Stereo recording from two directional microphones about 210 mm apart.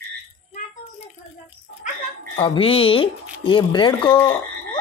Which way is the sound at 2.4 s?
25° left (ahead or behind).